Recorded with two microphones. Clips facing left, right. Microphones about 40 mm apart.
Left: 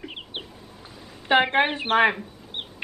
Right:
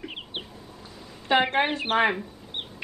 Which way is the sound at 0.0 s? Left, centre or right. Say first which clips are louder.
Even; centre.